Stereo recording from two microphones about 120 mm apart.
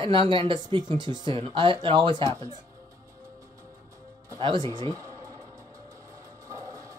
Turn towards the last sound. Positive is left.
turn(degrees=-35)  # may be behind; listen again after turning